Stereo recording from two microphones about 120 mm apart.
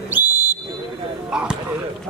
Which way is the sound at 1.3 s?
5° right (ahead or behind).